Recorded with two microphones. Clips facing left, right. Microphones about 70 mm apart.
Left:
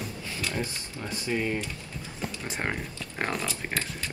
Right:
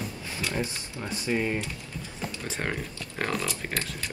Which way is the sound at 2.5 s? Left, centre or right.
Centre.